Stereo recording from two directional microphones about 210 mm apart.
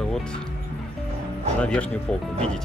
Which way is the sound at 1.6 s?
5° left (ahead or behind).